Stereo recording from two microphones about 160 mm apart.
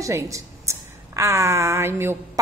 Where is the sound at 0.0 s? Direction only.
20° right (ahead or behind).